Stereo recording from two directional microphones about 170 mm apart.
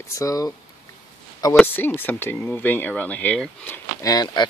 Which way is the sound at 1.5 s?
10° left (ahead or behind).